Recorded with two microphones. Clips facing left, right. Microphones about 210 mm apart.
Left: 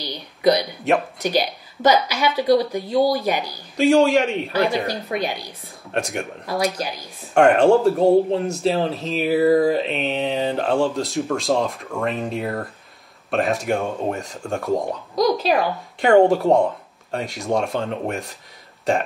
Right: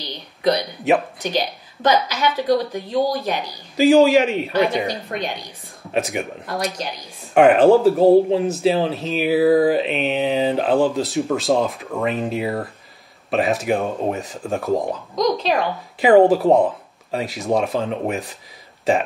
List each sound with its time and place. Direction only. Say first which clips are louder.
0.0 s a sound: left 2 dB; 10° left (ahead or behind)
0.9 s speech: right 2 dB; centre (ahead or behind)
1.2 s a woman's voice: left 2 dB; 10° left (ahead or behind)
3.7 s speech: right 3 dB; centre (ahead or behind)